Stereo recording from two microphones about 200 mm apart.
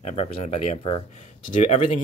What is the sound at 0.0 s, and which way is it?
Speech, 35° left (ahead or behind).